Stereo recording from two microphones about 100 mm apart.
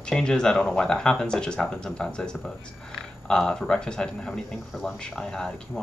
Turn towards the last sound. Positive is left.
turn(degrees=5)  # may be behind; listen again after turning